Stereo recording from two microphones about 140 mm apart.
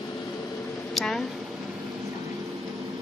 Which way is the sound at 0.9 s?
Centre (ahead or behind).